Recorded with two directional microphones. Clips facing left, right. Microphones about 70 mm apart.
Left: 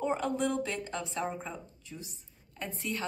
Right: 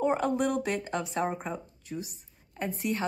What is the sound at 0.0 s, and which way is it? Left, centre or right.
Speech, right.